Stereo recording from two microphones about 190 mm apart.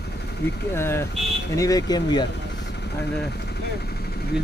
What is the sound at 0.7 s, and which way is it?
Speech, 10° left (ahead or behind).